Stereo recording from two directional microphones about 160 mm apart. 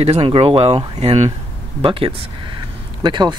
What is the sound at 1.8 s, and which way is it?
Speech, 35° right (ahead or behind).